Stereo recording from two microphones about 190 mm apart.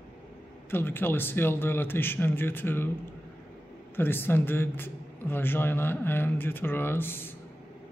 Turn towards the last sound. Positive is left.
turn(degrees=10)  # may be behind; listen again after turning